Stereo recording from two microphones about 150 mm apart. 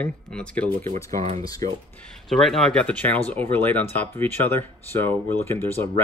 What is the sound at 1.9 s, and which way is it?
Speech, 5° left (ahead or behind).